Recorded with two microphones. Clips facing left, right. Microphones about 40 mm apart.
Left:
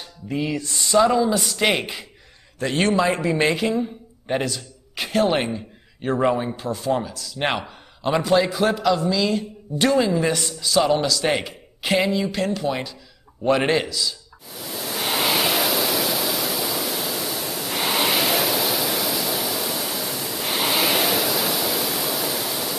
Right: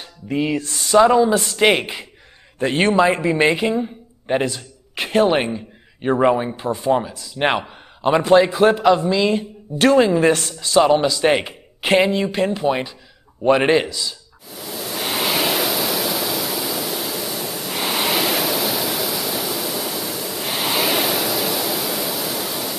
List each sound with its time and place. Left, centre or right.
0.0 s music: right
0.8 s a man's voice: right
8.2 s a man's voice: right
14.5 s pink noise: centre